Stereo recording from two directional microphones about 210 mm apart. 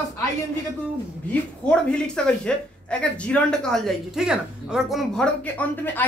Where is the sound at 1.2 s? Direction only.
5° left (ahead or behind).